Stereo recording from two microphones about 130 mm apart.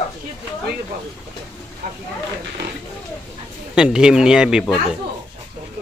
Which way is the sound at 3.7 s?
5° right (ahead or behind).